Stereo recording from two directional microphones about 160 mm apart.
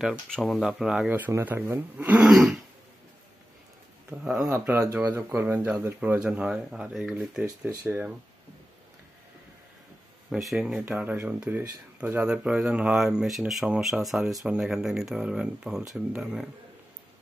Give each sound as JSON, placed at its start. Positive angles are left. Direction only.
{"t": 0.0, "sound": "speech", "side_deg": 0}
{"t": 4.2, "sound": "speech", "side_deg": -5}
{"t": 4.5, "sound": "speech", "side_deg": -20}
{"t": 7.4, "sound": "speech", "side_deg": -25}
{"t": 7.8, "sound": "speech", "side_deg": -10}
{"t": 10.3, "sound": "speech", "side_deg": -5}